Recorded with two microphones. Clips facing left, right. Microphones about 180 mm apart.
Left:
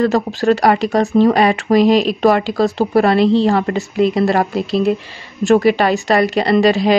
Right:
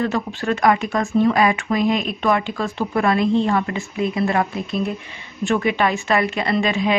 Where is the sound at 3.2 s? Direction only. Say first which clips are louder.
Left 5 dB; 90° left.